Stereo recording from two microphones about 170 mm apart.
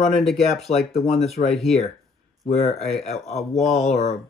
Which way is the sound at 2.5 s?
40° left (ahead or behind).